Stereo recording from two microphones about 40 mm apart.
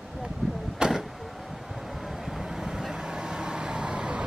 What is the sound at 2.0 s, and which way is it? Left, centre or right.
Vehicle, centre.